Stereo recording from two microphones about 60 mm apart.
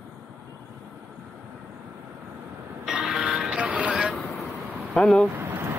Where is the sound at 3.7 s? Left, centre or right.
Centre.